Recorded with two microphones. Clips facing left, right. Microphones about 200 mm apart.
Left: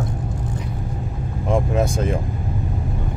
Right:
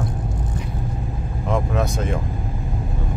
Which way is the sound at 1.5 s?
30° left (ahead or behind).